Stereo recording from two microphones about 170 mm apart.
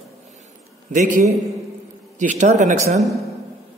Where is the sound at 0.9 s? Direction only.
45° right (ahead or behind).